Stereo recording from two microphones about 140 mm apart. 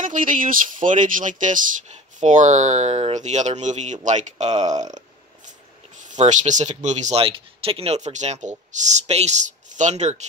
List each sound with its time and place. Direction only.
0.0 s speech: 70° right (ahead or behind); by 4.8 s 55° right (ahead or behind)
6.1 s speech: 60° right (ahead or behind)
7.2 s speech: 45° right (ahead or behind)